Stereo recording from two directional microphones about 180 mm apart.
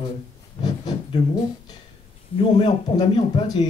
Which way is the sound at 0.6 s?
25° left (ahead or behind).